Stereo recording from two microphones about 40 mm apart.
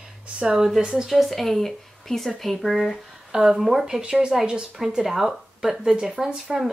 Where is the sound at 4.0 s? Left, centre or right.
Right.